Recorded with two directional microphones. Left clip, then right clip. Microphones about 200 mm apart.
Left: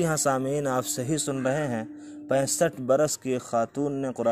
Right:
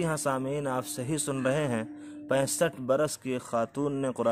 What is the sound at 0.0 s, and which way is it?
Speech, 20° left (ahead or behind).